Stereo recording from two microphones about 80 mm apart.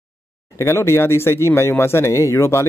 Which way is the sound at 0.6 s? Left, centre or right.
Left.